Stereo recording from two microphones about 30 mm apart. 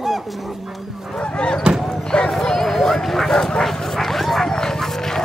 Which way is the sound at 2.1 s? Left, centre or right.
Left.